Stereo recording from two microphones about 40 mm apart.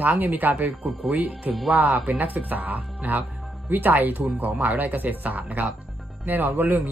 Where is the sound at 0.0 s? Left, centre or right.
Right.